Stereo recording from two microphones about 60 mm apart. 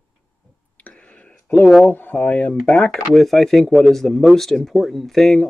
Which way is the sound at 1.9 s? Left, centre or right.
Left.